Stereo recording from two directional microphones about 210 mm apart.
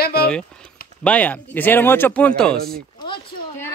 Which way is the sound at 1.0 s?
5° left (ahead or behind).